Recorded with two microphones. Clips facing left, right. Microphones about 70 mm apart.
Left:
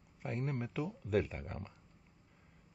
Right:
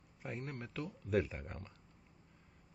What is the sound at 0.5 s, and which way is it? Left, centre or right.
Speech, centre.